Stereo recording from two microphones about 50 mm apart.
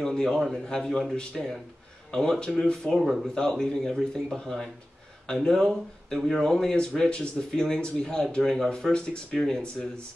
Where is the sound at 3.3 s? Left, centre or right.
Centre.